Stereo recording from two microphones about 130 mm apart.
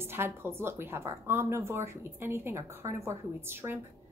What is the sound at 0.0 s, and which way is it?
A woman's voice, 20° right (ahead or behind).